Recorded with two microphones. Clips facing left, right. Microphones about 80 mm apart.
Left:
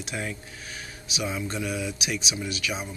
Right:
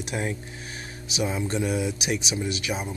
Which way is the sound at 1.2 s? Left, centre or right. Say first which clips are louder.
Right 4 dB; right.